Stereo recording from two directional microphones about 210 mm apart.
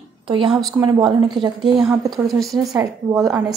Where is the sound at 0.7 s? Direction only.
20° right (ahead or behind).